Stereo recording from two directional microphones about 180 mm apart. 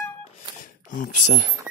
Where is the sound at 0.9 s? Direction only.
45° left (ahead or behind).